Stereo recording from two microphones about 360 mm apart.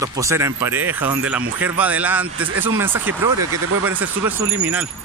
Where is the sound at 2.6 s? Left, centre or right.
Centre.